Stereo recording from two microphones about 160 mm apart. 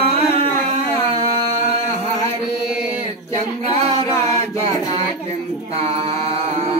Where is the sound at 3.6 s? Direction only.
40° right (ahead or behind).